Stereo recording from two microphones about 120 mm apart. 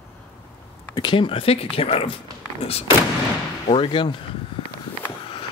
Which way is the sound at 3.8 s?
45° left (ahead or behind).